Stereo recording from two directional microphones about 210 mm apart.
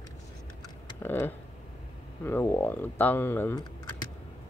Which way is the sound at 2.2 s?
10° left (ahead or behind).